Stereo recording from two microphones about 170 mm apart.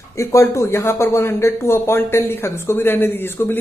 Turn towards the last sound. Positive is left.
turn(degrees=15)  # may be behind; listen again after turning